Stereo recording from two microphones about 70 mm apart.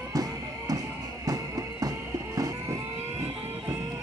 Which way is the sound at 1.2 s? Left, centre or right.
Right.